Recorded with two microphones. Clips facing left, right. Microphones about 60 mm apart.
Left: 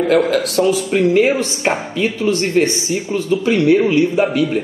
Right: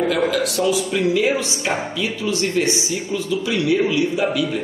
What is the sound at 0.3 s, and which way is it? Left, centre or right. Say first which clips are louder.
Speech: left 4 dB; left.